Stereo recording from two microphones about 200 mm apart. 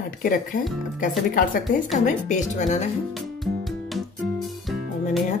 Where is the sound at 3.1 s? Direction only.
Centre (ahead or behind).